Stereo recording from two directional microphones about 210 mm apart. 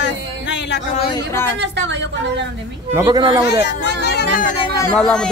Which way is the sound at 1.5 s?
60° right (ahead or behind).